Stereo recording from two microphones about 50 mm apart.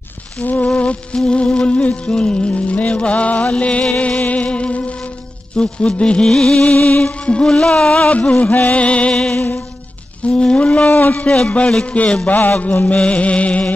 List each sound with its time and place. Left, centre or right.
0.4 s music: left; by 6.6 s centre
6.6 s music: left
11.2 s music: left